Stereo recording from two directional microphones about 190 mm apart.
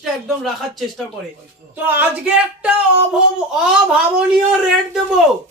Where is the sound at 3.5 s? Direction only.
5° right (ahead or behind).